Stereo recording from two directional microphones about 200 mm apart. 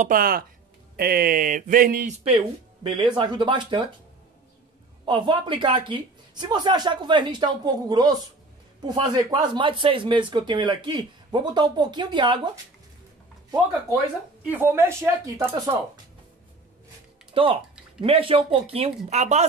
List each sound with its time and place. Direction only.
0.0 s speech: 45° right (ahead or behind)
2.8 s speech: 25° right (ahead or behind)
5.0 s speech: 25° right (ahead or behind)
14.5 s speech: 10° right (ahead or behind)
17.3 s speech: 25° right (ahead or behind)